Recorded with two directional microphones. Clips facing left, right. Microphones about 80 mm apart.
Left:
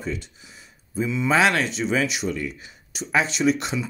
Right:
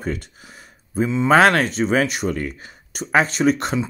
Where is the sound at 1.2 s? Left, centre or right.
Right.